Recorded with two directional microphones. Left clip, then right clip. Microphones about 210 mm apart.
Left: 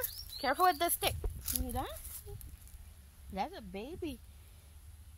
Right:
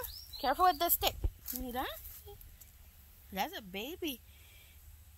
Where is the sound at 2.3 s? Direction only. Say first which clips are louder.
Right 1 dB; 40° right (ahead or behind).